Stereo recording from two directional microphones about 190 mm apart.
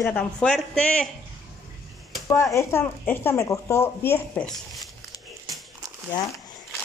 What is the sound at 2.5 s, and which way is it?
Speech, 10° left (ahead or behind).